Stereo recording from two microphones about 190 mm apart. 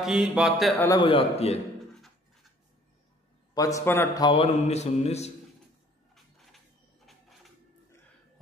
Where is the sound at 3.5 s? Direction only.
15° left (ahead or behind).